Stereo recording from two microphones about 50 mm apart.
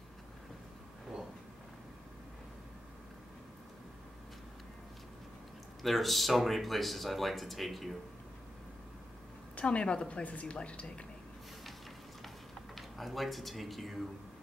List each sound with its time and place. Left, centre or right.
5.8 s speech: centre
9.6 s a woman's voice: left
12.7 s speech: centre